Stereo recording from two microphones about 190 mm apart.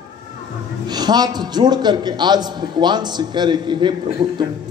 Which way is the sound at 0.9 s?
20° right (ahead or behind).